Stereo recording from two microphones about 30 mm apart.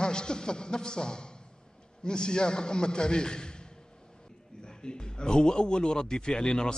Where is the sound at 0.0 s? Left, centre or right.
Left.